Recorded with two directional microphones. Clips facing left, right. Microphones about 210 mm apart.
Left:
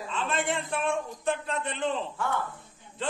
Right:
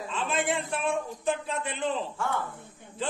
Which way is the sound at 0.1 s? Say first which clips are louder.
Right 1 dB; centre (ahead or behind).